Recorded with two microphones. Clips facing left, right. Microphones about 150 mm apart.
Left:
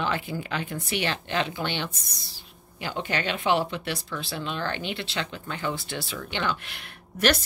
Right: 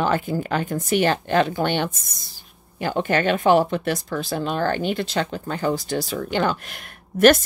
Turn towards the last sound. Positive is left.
turn(degrees=-50)  # may be behind; listen again after turning